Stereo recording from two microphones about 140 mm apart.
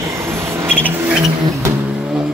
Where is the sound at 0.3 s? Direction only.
20° right (ahead or behind).